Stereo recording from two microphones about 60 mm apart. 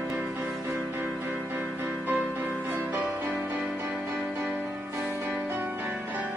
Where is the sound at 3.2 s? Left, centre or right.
Right.